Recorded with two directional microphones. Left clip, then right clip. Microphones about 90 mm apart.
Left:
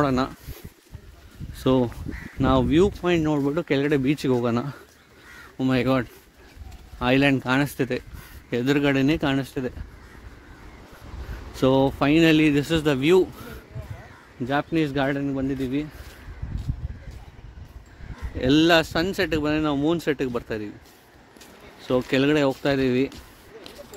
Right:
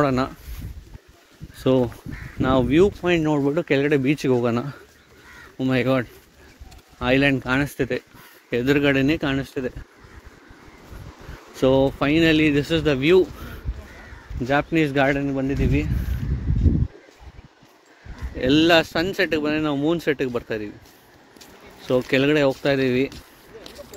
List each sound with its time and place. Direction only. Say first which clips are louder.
0.0 s speech: right 2 dB; 20° left (ahead or behind)
2.4 s speech: right 1 dB; 20° left (ahead or behind)
2.7 s speech: right 2 dB; 10° left (ahead or behind)
5.7 s speech: right 2 dB; 30° left (ahead or behind)
8.5 s speech: right 3 dB; 10° left (ahead or behind)
9.2 s speech: even; 35° left (ahead or behind)
11.5 s speech: right 2 dB; 35° left (ahead or behind)
14.5 s speech: right 4 dB; 5° left (ahead or behind)
18.4 s speech: right 2 dB; 15° left (ahead or behind)
21.8 s speech: right 2 dB; 20° left (ahead or behind)